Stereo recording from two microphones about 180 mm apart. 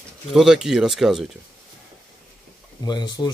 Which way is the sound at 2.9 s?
25° left (ahead or behind).